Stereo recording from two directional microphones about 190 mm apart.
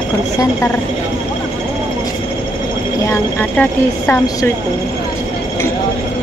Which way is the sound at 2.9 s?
15° left (ahead or behind).